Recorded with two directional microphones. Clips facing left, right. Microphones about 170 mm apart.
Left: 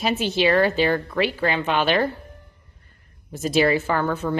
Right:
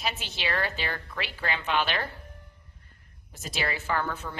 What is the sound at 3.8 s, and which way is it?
Speech, 60° left (ahead or behind).